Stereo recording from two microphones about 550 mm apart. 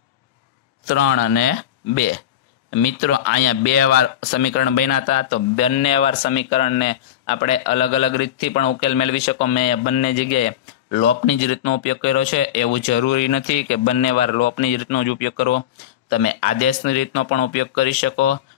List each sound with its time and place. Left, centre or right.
0.9 s speech: centre